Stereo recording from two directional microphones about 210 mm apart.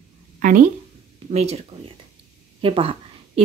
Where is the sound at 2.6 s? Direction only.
25° right (ahead or behind).